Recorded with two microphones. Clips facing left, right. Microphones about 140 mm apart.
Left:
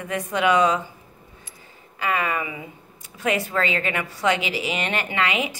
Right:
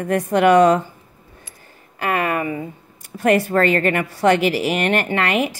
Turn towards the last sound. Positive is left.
turn(degrees=-55)  # may be behind; listen again after turning